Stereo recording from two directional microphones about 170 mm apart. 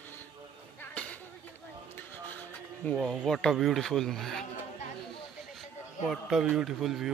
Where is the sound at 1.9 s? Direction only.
10° left (ahead or behind).